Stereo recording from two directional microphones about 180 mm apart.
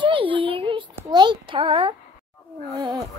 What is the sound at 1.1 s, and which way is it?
Speech, 25° right (ahead or behind).